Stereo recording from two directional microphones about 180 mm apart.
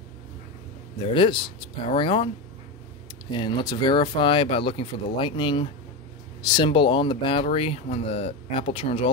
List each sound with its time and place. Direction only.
0.9 s speech: 25° left (ahead or behind)
3.3 s speech: 25° left (ahead or behind)